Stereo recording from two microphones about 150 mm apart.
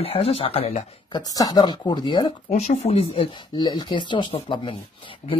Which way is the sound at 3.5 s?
30° left (ahead or behind).